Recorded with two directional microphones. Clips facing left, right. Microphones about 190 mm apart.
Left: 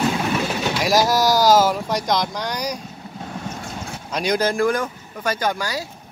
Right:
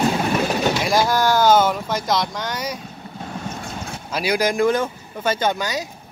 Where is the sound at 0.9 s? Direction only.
40° left (ahead or behind).